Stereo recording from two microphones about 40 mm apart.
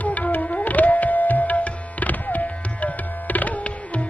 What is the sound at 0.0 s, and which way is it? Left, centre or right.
Music, left.